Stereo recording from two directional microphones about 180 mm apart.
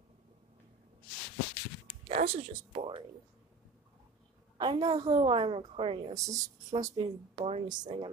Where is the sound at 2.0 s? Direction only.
35° right (ahead or behind).